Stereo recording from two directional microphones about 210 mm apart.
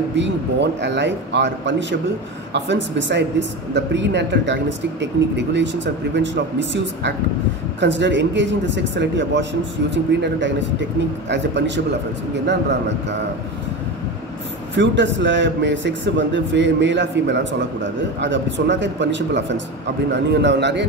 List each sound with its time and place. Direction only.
0.1 s a man's voice: 55° right (ahead or behind)
14.8 s a man's voice: 60° right (ahead or behind)